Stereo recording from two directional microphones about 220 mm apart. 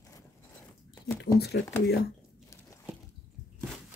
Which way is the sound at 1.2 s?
50° left (ahead or behind).